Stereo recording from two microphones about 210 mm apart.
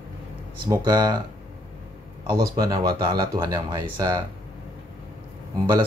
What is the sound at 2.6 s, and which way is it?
Speech, 20° right (ahead or behind).